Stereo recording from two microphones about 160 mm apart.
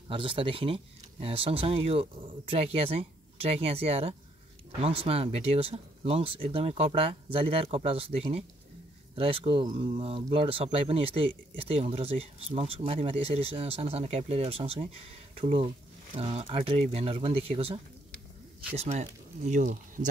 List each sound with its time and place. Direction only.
0.1 s speech: 35° right (ahead or behind)
18.8 s speech: 45° right (ahead or behind)